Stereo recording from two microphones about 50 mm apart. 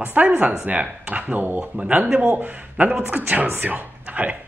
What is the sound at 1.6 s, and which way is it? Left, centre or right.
Speech, right.